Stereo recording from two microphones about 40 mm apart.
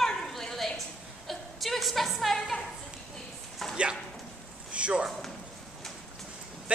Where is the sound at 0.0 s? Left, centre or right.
Centre.